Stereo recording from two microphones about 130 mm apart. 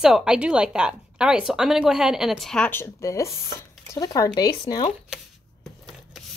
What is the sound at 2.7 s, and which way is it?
Speech, 20° left (ahead or behind).